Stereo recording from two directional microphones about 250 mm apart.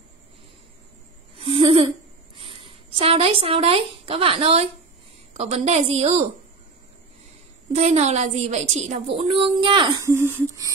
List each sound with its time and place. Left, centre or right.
1.4 s a sound: right
4.0 s a woman's voice: right
7.7 s a woman's voice: right